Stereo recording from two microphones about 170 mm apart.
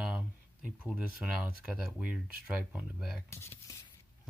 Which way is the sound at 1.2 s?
5° right (ahead or behind).